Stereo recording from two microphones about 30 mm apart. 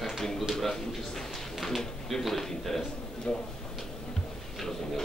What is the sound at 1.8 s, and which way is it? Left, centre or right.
A man's voice, centre.